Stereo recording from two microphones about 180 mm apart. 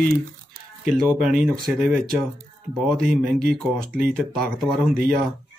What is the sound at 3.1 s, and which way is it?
Speech, 55° right (ahead or behind).